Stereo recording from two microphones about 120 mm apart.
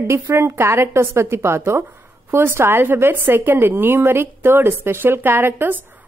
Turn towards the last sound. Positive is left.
turn(degrees=-15)  # may be behind; listen again after turning